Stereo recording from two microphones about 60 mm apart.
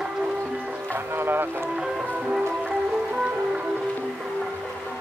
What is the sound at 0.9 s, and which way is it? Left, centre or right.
Music, right.